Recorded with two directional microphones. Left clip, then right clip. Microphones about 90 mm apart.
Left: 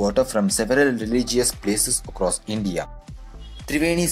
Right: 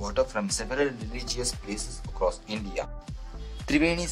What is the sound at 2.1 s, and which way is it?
Speech, 40° left (ahead or behind).